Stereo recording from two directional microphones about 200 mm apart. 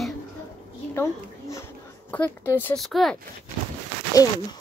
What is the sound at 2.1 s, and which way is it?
Speech, 10° left (ahead or behind).